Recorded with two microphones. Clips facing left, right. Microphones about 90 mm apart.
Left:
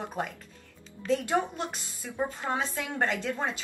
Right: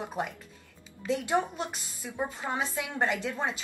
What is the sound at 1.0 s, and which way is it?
A woman's voice, 10° right (ahead or behind).